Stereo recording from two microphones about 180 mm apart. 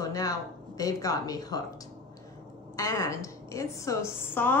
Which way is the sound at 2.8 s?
15° left (ahead or behind).